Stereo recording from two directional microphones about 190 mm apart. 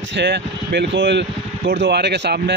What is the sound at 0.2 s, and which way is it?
Speech, 60° right (ahead or behind).